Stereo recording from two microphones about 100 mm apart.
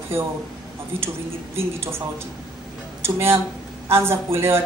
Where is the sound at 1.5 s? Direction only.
25° right (ahead or behind).